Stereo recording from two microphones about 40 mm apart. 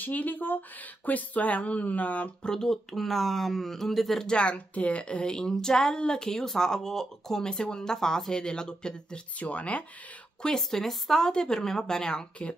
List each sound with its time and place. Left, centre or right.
0.0 s speech: left
2.4 s speech: centre
4.3 s a woman's voice: left; by 7.4 s centre
7.4 s a woman's voice: left
9.4 s speech: left
10.4 s a woman's voice: centre